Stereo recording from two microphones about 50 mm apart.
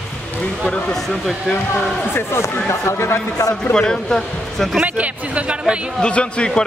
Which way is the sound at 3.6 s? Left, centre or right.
Centre.